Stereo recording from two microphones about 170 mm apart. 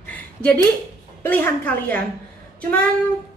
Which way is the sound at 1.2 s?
10° left (ahead or behind).